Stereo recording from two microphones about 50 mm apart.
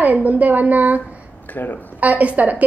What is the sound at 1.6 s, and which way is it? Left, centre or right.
Speech, left.